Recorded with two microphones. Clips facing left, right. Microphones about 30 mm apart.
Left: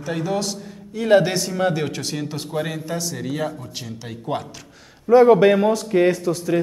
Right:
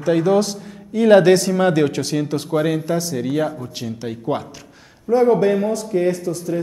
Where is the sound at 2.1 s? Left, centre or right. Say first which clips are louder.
Right 6 dB; centre.